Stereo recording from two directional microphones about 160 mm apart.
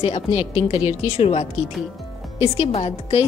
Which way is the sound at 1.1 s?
40° left (ahead or behind).